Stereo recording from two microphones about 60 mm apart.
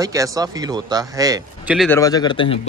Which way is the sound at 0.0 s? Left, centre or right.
Right.